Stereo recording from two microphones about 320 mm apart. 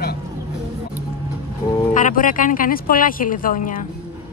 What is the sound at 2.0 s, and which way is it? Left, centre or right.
Speech, left.